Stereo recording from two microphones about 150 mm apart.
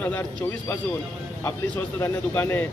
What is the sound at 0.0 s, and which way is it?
Speech, 10° left (ahead or behind).